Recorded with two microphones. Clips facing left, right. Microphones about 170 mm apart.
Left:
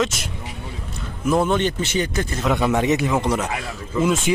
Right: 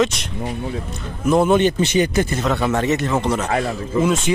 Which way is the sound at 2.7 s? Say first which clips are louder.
Even; 10° left (ahead or behind).